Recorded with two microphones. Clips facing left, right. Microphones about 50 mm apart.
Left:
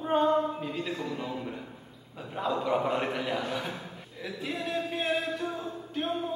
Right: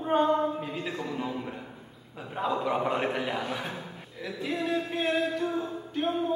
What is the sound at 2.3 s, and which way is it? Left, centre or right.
A man's voice, centre.